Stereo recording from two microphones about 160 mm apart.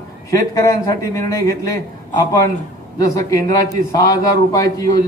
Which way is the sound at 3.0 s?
20° left (ahead or behind).